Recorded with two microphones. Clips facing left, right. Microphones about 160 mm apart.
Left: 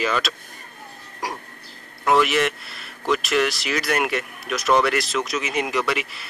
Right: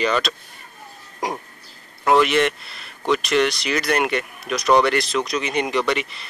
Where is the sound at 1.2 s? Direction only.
20° right (ahead or behind).